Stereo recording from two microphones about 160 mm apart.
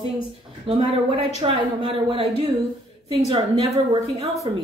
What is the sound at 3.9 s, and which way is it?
Speech, 40° right (ahead or behind).